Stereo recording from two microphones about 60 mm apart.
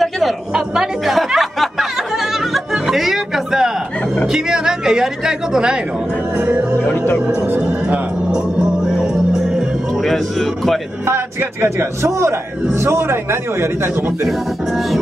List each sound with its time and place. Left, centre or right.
0.5 s chatter: centre
1.0 s music: centre
4.3 s speech: centre
6.3 s music: centre
6.8 s speech: left
7.6 s music: centre
11.1 s a man's voice: right
14.2 s speech: centre